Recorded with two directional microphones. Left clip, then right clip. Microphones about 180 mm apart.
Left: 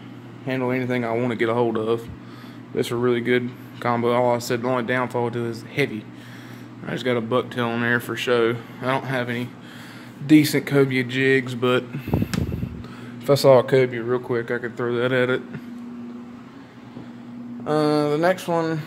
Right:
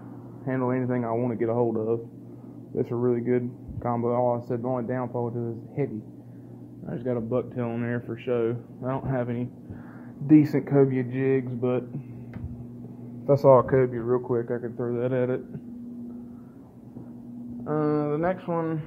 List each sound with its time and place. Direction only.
0.5 s speech: 25° left (ahead or behind)
6.9 s speech: 25° left (ahead or behind); by 9.5 s 10° left (ahead or behind)
10.2 s speech: 30° left (ahead or behind)
13.3 s speech: 35° left (ahead or behind)
13.7 s speech: 25° left (ahead or behind)
17.6 s speech: 20° left (ahead or behind)